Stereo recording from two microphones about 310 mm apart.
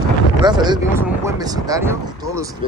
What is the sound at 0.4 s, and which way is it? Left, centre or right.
Speech, centre.